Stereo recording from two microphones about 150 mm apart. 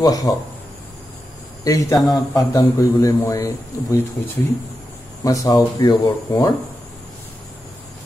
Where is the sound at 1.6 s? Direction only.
25° left (ahead or behind).